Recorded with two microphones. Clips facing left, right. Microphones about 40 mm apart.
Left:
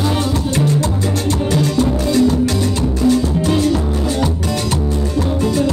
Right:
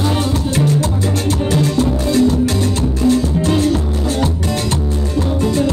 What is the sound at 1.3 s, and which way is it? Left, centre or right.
Music, right.